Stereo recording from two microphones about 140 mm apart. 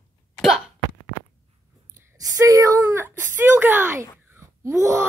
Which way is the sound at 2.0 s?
25° right (ahead or behind).